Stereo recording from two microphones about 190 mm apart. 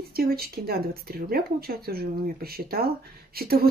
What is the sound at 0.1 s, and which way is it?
Speech, 55° right (ahead or behind).